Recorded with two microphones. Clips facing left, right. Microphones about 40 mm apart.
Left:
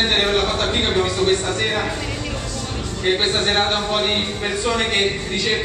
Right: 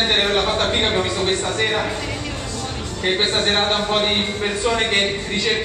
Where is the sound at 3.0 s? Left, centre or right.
Centre.